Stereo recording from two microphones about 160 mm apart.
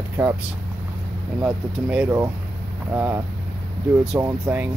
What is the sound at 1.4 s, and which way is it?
Speech, 5° right (ahead or behind).